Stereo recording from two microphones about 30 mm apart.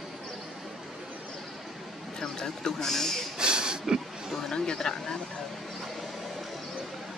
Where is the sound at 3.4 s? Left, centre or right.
Right.